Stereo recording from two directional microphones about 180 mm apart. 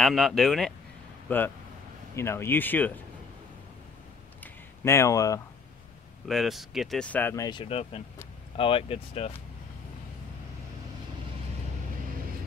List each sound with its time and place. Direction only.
0.0 s speech: centre (ahead or behind)
4.4 s a sound: 15° left (ahead or behind)
6.2 s speech: centre (ahead or behind)
7.4 s speech: 30° left (ahead or behind)